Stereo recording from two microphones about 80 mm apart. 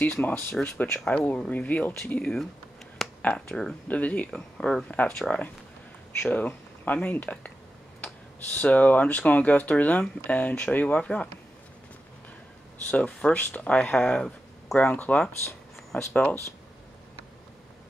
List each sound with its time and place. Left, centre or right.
0.0 s speech: left
4.3 s speech: centre
6.3 s speech: centre
8.5 s speech: centre
12.9 s speech: centre